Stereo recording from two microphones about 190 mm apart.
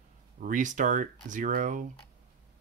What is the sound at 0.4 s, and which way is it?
Speech, 40° right (ahead or behind).